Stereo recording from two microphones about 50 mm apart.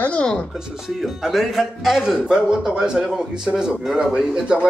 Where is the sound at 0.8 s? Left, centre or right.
Centre.